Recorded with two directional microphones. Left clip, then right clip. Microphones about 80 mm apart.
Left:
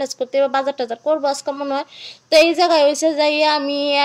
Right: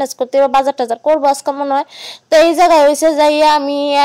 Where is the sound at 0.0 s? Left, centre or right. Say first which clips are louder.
Right 5 dB; right.